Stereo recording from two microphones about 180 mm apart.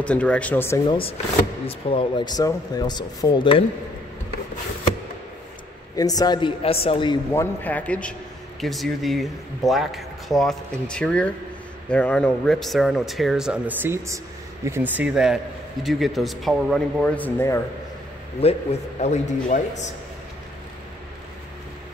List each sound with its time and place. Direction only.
0.0 s speech: 5° left (ahead or behind)
0.8 s a man's voice: 30° left (ahead or behind)
5.9 s speech: 20° left (ahead or behind)
7.3 s speech: 10° left (ahead or behind)
18.4 s a man's voice: 35° left (ahead or behind)